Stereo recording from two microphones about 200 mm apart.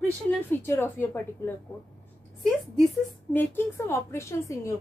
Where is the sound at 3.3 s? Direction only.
10° left (ahead or behind).